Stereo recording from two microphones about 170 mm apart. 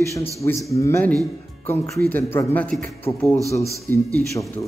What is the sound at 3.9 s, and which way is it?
Speech, 15° left (ahead or behind).